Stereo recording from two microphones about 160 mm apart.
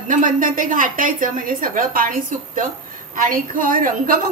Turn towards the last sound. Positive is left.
turn(degrees=-60)  # may be behind; listen again after turning